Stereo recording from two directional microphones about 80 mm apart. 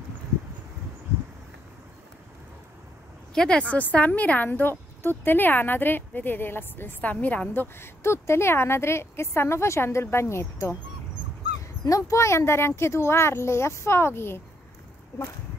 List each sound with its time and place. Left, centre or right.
3.3 s a woman's voice: centre; by 10.8 s left
11.8 s speech: left